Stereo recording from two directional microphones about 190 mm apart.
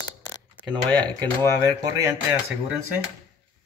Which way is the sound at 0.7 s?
20° right (ahead or behind).